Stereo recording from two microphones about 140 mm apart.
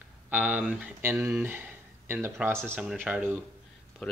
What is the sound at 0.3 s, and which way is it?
Speech, 10° right (ahead or behind).